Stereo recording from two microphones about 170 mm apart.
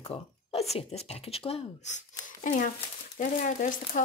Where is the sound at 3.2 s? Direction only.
50° left (ahead or behind).